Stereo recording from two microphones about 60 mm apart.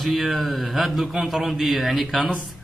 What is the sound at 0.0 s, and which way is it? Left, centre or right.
A man's voice, centre.